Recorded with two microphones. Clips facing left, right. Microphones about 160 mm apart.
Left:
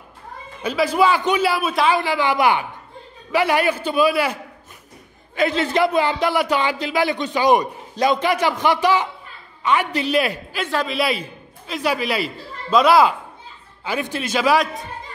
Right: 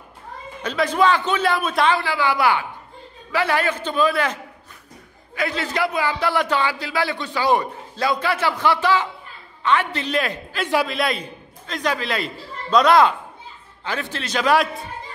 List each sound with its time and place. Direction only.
0.6 s a man's voice: 5° left (ahead or behind)
2.0 s a man's voice: 20° left (ahead or behind)
5.3 s a man's voice: 25° left (ahead or behind); by 14.9 s centre (ahead or behind)